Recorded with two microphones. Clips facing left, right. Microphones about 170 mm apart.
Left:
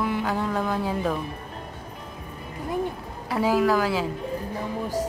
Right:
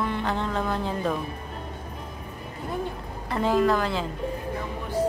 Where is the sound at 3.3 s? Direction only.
5° left (ahead or behind).